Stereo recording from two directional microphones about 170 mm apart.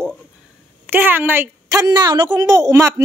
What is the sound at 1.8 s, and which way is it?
Speech, 25° right (ahead or behind).